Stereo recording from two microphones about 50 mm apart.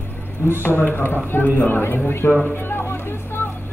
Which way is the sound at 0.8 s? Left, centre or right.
Left.